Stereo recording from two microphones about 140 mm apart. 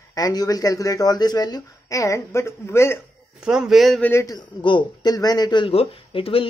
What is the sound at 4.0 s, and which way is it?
Speech, 20° left (ahead or behind).